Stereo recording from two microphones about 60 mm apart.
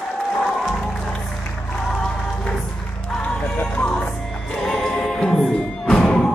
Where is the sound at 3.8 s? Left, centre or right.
Centre.